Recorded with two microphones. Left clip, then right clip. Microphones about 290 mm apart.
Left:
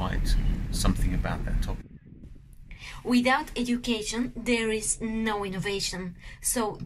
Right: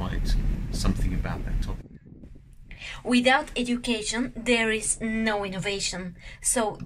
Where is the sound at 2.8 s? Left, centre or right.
Left.